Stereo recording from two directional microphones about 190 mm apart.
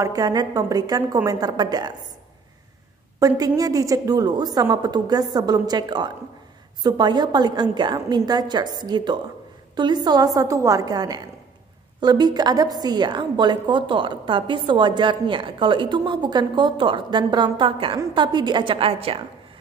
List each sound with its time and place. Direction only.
0.0 s a woman's voice: 20° right (ahead or behind)
3.2 s a woman's voice: 20° right (ahead or behind)